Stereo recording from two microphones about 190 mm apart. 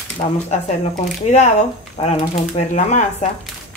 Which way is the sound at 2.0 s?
35° left (ahead or behind).